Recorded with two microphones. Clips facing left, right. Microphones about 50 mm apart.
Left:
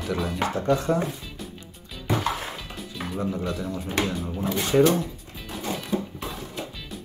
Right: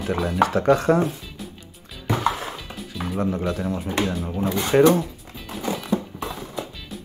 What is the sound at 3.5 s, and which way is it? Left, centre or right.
Speech, right.